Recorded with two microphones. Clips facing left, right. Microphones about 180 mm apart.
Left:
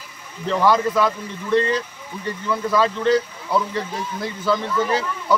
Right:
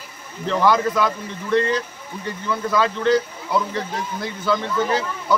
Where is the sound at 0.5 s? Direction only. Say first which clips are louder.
Even; 5° left (ahead or behind).